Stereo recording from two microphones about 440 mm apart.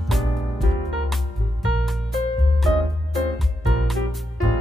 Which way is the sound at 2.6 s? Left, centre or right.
Centre.